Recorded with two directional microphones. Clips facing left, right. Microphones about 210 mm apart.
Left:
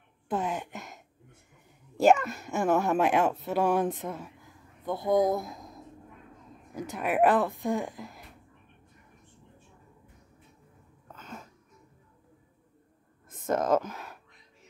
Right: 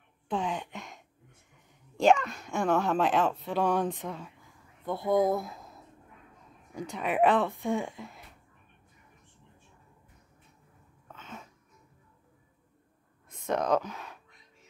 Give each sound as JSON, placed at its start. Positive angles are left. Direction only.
{"t": 0.3, "sound": "a sound", "side_deg": 5}
{"t": 2.0, "sound": "speech", "side_deg": 5}
{"t": 5.3, "sound": "speech", "side_deg": 15}
{"t": 6.7, "sound": "speech", "side_deg": 5}
{"t": 11.1, "sound": "sneeze", "side_deg": 0}
{"t": 13.3, "sound": "a sound", "side_deg": 0}